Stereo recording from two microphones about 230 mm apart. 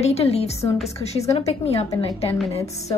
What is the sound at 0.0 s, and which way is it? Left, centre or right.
A woman's voice, left.